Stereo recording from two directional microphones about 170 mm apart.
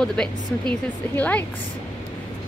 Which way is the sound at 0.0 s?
5° left (ahead or behind).